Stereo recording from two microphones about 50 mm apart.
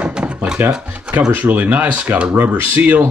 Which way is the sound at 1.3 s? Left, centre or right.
Right.